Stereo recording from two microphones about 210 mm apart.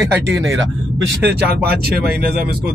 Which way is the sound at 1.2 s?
50° right (ahead or behind).